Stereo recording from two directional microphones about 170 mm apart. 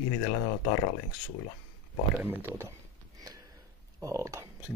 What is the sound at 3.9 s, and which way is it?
Speech, 20° right (ahead or behind).